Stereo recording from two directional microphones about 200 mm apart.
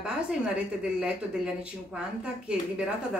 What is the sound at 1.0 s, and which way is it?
Speech, 5° right (ahead or behind).